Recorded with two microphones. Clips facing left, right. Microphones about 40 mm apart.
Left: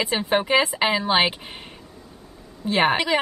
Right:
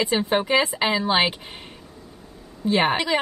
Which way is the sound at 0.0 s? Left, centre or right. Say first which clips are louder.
Even; centre.